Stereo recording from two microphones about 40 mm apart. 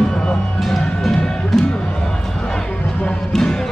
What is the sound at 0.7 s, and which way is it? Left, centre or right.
Music, centre.